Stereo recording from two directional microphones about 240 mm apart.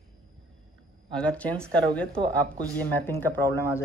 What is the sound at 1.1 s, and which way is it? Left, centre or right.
Speech, centre.